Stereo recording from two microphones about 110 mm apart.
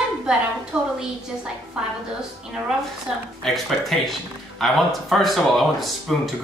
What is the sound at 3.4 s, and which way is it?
A woman's voice, centre (ahead or behind).